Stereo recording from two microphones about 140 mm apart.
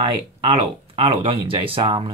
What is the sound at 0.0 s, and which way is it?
Speech, 35° right (ahead or behind).